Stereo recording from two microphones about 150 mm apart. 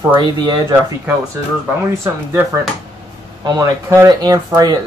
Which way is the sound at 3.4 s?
30° right (ahead or behind).